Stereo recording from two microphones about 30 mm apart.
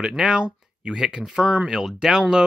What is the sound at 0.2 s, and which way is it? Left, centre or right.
Speech, right.